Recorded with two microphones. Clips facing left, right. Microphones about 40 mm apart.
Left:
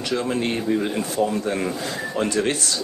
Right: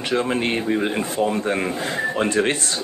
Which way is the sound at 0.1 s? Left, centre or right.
Right.